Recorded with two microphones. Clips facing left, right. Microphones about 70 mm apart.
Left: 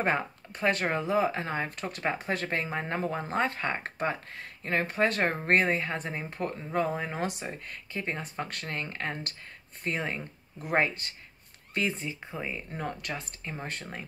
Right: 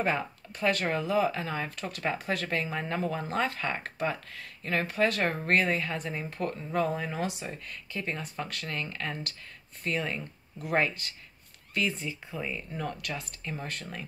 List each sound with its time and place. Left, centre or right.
0.0 s speech: left
7.0 s speech: left